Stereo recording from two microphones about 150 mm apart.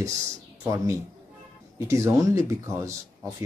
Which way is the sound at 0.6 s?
20° right (ahead or behind).